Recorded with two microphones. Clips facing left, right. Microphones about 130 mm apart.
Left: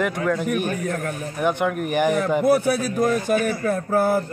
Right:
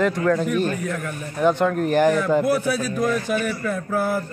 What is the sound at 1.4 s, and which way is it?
Speech, 10° left (ahead or behind).